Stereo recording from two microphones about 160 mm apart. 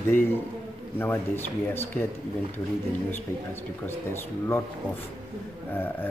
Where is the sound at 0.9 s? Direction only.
10° left (ahead or behind).